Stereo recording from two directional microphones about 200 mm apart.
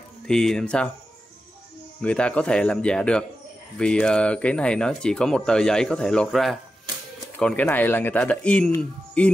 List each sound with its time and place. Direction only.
0.3 s speech: 5° left (ahead or behind)
2.0 s speech: 5° left (ahead or behind)